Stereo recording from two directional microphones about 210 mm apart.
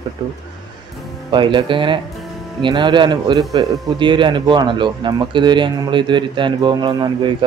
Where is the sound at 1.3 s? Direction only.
25° right (ahead or behind).